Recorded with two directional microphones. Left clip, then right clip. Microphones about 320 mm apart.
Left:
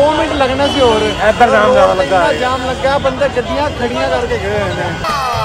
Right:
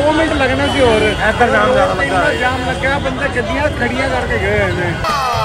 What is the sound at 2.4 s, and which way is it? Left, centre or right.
Speech, centre.